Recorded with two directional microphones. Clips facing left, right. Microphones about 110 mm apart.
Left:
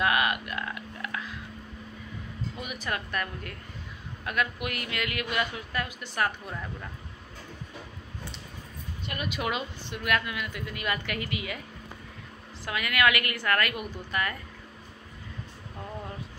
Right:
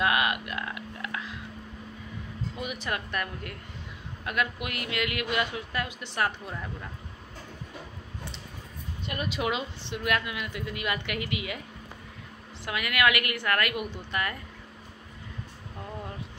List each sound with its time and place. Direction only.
0.0 s a sound: 20° right (ahead or behind)
2.5 s a woman's voice: 25° right (ahead or behind)
9.0 s a woman's voice: 30° right (ahead or behind)
11.1 s a woman's voice: 30° left (ahead or behind)
12.6 s a woman's voice: 20° right (ahead or behind)